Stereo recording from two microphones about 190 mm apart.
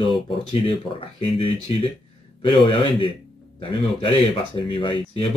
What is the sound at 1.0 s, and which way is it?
Speech, 30° left (ahead or behind).